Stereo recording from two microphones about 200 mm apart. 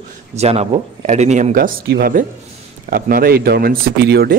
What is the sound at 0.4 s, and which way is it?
Speech, 30° right (ahead or behind).